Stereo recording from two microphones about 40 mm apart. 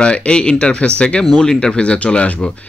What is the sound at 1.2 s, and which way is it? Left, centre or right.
Speech, centre.